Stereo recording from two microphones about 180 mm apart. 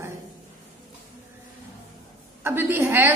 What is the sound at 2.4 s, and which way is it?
Speech, 10° right (ahead or behind).